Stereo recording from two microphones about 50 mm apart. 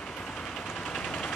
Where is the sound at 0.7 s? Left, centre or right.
Centre.